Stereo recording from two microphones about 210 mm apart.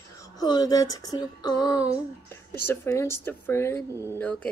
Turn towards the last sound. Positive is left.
turn(degrees=5)  # may be behind; listen again after turning